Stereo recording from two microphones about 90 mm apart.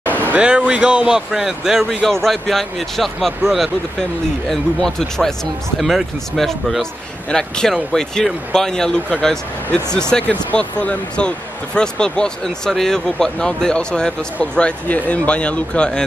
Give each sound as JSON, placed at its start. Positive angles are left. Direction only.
{"t": 0.0, "sound": "speech", "side_deg": -20}